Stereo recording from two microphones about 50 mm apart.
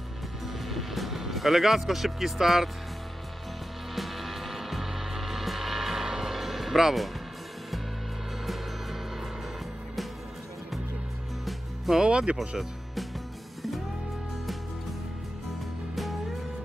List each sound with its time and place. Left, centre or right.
0.7 s speech: centre
3.9 s music: centre
11.4 s music: centre
12.0 s speech: right
12.4 s music: centre